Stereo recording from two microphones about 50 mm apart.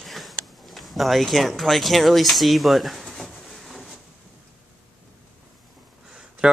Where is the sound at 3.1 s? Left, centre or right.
Centre.